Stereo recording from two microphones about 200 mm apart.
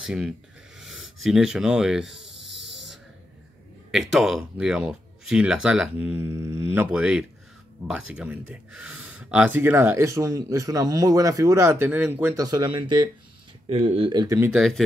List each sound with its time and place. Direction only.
0.0 s speech: 5° right (ahead or behind)
0.7 s a sound: centre (ahead or behind)
1.2 s speech: 5° right (ahead or behind)
3.9 s speech: centre (ahead or behind); by 14.5 s 15° right (ahead or behind)
14.5 s speech: centre (ahead or behind)